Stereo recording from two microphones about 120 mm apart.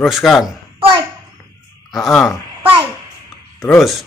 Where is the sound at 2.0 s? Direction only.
Centre (ahead or behind).